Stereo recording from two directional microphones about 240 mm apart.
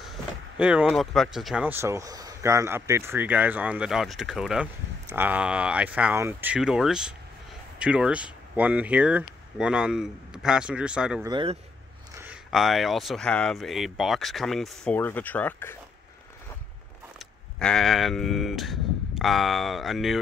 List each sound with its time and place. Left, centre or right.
0.6 s speech: centre
11.2 s speech: centre
12.2 s speech: centre
17.6 s speech: centre